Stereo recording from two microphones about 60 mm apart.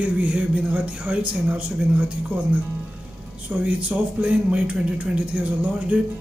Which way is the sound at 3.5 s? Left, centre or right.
Right.